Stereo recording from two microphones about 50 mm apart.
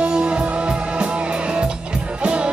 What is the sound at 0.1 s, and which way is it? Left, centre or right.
Music, centre.